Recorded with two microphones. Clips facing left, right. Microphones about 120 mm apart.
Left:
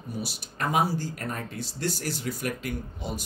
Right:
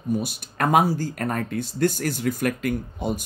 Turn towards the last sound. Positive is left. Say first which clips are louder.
# right 7 dB
turn(degrees=-50)  # may be behind; listen again after turning